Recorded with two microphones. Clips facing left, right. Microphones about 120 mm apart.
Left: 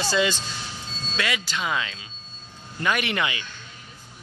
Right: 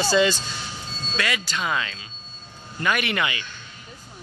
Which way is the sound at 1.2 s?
15° left (ahead or behind).